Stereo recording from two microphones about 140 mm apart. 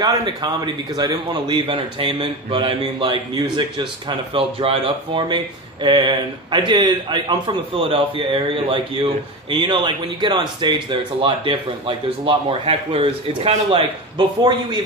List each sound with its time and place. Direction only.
0.0 s speech: 30° right (ahead or behind)